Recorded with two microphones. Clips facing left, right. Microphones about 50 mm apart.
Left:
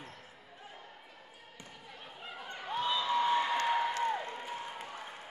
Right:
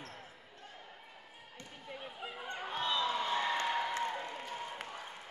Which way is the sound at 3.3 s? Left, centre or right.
Centre.